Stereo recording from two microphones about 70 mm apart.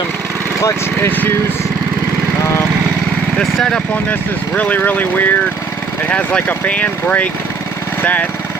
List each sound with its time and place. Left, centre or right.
1.0 s speech: left
4.1 s speech: left